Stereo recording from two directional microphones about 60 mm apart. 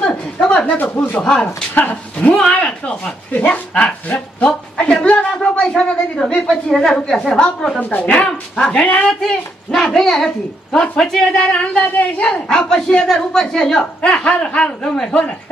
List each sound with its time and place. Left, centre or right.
0.0 s a sound: centre
0.7 s speech: left
4.7 s a sound: centre
5.8 s speech: centre
7.9 s speech: left
8.3 s speech: centre